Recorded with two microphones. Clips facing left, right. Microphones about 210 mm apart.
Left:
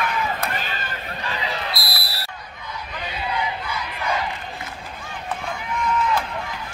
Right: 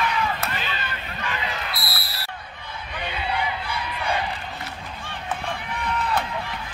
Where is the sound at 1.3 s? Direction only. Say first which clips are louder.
Left 3 dB; 35° left (ahead or behind).